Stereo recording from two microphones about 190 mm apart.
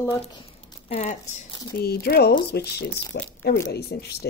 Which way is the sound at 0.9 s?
35° left (ahead or behind).